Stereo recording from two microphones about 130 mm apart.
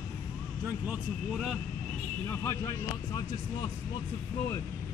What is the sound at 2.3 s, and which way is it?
Speech, 25° left (ahead or behind).